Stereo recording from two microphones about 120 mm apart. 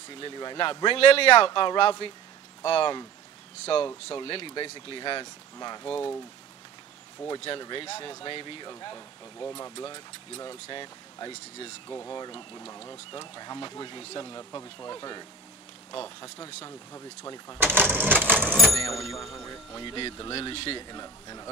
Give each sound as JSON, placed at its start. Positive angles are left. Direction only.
{"t": 0.1, "sound": "speech", "side_deg": 40}
{"t": 7.2, "sound": "speech", "side_deg": 45}
{"t": 8.7, "sound": "speech", "side_deg": 30}
{"t": 16.6, "sound": "speech", "side_deg": 30}
{"t": 17.6, "sound": "speech", "side_deg": -15}
{"t": 18.8, "sound": "speech", "side_deg": 25}
{"t": 20.9, "sound": "speech", "side_deg": 30}